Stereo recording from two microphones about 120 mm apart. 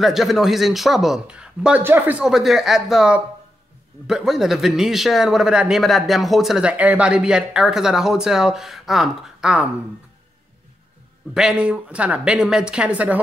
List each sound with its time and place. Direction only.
0.0 s speech: centre (ahead or behind)
2.2 s speech: 5° right (ahead or behind)
11.3 s speech: 10° right (ahead or behind)